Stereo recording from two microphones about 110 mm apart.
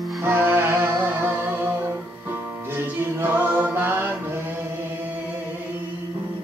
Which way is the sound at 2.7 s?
20° right (ahead or behind).